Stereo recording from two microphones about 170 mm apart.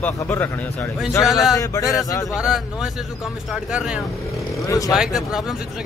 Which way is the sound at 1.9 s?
20° left (ahead or behind).